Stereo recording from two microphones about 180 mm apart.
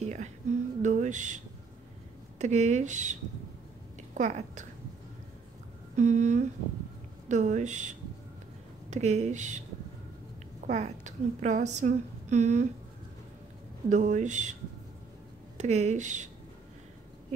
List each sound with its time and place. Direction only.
0.1 s music: 40° right (ahead or behind)
2.3 s a woman's voice: 40° right (ahead or behind)
5.9 s a woman's voice: 40° right (ahead or behind)
8.9 s a woman's voice: 40° right (ahead or behind)
10.7 s a woman's voice: 40° right (ahead or behind)
13.8 s a woman's voice: 40° right (ahead or behind)